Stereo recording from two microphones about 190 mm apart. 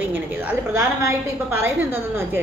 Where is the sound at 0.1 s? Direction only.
10° right (ahead or behind).